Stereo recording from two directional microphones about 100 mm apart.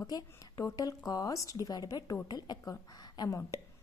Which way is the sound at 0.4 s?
35° left (ahead or behind).